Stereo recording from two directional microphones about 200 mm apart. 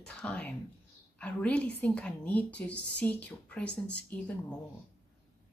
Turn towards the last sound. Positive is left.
turn(degrees=5)  # may be behind; listen again after turning